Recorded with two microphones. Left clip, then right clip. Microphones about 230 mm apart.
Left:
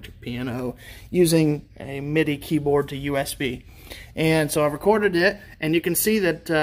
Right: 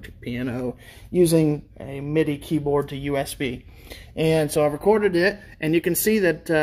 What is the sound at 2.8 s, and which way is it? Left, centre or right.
Speech, centre.